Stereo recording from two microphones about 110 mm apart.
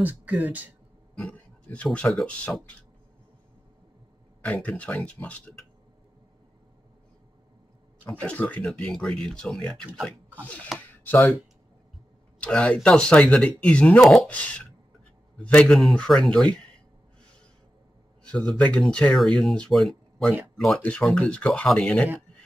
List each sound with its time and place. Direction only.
0.0 s speech: 15° right (ahead or behind)
1.1 s speech: 10° left (ahead or behind)
4.5 s speech: 15° left (ahead or behind)
8.1 s speech: 10° left (ahead or behind)
10.9 s a sound: 15° left (ahead or behind)
12.4 s speech: 10° left (ahead or behind)
18.2 s speech: 10° left (ahead or behind)